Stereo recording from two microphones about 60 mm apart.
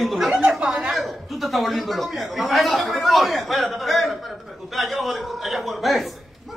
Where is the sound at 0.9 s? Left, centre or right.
Centre.